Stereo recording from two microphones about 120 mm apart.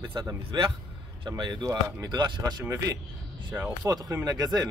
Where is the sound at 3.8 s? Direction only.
30° right (ahead or behind).